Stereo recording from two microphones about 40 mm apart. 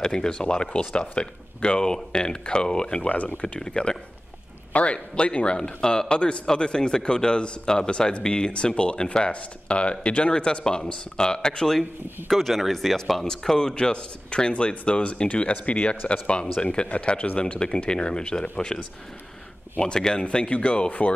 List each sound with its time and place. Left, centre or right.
0.0 s speech: centre
3.1 s speech: left
3.6 s speech: centre
12.3 s speech: centre; by 17.8 s left
17.8 s speech: left
19.8 s speech: centre
20.2 s speech: left